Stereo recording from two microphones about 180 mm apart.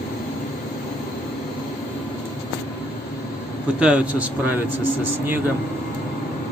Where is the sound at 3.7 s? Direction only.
5° right (ahead or behind).